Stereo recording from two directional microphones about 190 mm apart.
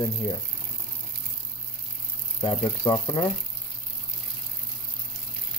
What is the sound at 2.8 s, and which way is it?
Speech, 20° left (ahead or behind).